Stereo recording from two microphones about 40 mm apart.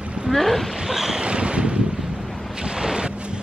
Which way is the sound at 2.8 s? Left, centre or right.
Centre.